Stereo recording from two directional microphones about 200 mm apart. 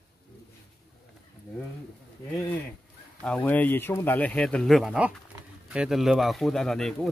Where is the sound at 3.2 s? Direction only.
5° left (ahead or behind).